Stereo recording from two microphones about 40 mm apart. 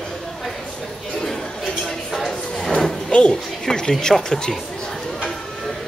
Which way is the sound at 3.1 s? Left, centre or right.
Left.